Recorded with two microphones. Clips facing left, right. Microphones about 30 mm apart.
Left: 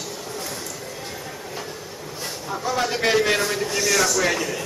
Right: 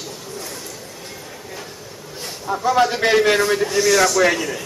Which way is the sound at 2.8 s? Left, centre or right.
Right.